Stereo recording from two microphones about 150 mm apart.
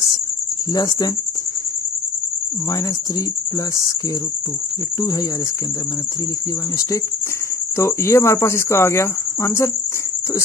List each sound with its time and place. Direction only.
0.7 s speech: 25° left (ahead or behind)
7.7 s speech: 20° left (ahead or behind)